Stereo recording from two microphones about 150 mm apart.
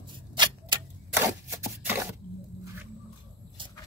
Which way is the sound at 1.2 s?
15° right (ahead or behind).